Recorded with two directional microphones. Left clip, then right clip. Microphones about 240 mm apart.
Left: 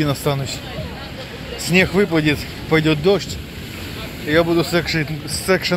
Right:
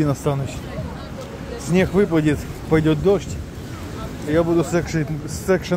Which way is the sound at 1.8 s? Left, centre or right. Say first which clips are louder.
Left 1 dB; centre.